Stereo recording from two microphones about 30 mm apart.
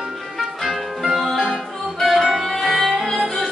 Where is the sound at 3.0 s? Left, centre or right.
Centre.